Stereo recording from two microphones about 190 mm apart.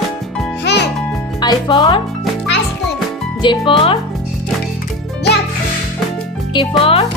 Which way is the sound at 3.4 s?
25° left (ahead or behind).